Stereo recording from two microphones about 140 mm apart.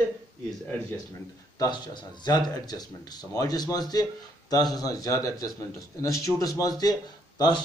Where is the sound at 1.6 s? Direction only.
30° left (ahead or behind).